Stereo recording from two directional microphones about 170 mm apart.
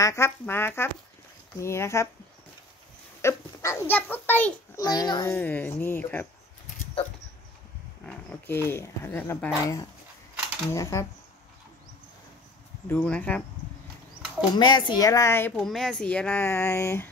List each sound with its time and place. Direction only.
0.0 s speech: 15° left (ahead or behind)
3.2 s speech: 15° left (ahead or behind)
4.7 s speech: 25° left (ahead or behind)
5.3 s speech: 10° left (ahead or behind)
8.0 s speech: 10° left (ahead or behind)
12.8 s speech: 10° left (ahead or behind)
14.5 s speech: 25° left (ahead or behind)
15.5 s speech: centre (ahead or behind)